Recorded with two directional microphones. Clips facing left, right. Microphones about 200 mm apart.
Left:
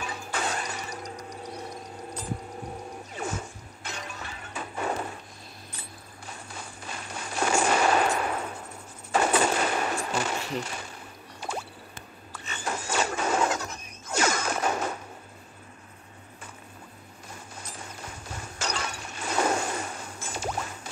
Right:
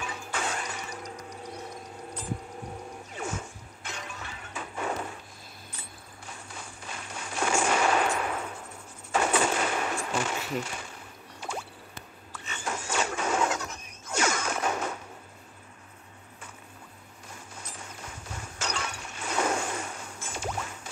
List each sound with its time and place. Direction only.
0.0 s music: 40° left (ahead or behind)
3.2 s music: 40° left (ahead or behind)
6.2 s firecracker: 40° left (ahead or behind)
9.1 s gunshot: 40° left (ahead or behind)
11.4 s a sound: 40° left (ahead or behind)
17.6 s breaking: 40° left (ahead or behind)